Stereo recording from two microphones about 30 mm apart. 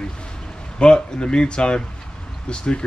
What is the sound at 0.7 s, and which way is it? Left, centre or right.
Speech, left.